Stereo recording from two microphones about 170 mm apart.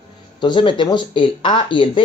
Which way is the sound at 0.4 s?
30° left (ahead or behind).